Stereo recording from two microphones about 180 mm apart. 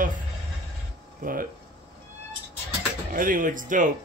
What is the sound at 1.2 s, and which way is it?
Speech, 50° right (ahead or behind).